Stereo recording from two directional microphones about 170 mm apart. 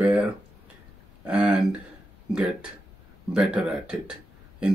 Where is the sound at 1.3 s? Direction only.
5° right (ahead or behind).